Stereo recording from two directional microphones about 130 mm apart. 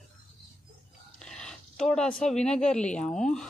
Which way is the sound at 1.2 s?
5° left (ahead or behind).